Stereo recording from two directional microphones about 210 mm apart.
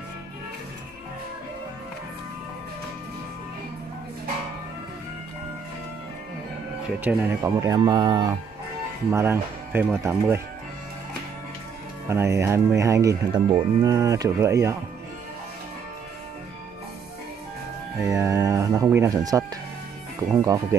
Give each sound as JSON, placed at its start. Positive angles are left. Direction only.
{"t": 7.0, "sound": "speech", "side_deg": -10}
{"t": 12.1, "sound": "speech", "side_deg": -15}
{"t": 18.0, "sound": "speech", "side_deg": -15}